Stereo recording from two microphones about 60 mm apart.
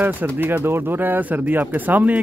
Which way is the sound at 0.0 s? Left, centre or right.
Right.